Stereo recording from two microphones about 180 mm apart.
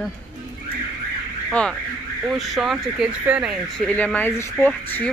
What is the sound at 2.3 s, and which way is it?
Speech, centre (ahead or behind).